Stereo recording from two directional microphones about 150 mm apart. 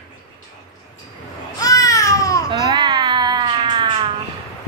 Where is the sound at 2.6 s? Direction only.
30° right (ahead or behind).